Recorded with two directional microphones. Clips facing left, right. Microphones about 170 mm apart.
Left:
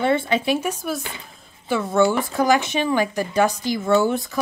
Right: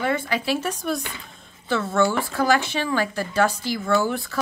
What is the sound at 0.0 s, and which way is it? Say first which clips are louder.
Speech: left 4 dB; 25° left (ahead or behind).